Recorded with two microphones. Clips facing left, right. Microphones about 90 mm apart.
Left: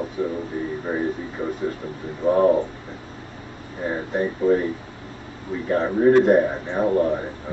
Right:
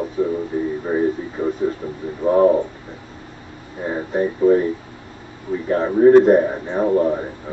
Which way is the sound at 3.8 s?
15° right (ahead or behind).